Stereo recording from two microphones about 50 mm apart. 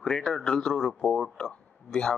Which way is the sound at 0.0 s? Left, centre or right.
Centre.